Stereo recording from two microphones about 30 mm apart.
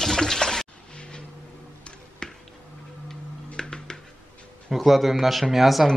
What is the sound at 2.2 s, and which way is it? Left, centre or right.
Music, left.